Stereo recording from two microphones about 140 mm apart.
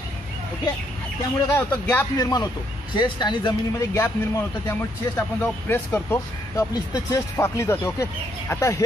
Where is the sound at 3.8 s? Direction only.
20° left (ahead or behind).